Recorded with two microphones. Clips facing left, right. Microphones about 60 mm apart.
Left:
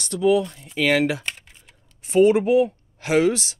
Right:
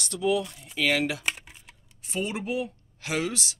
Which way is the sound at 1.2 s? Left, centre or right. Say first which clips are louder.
Right 1 dB; centre.